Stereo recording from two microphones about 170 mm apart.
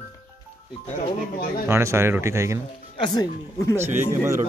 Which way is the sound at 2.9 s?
25° left (ahead or behind).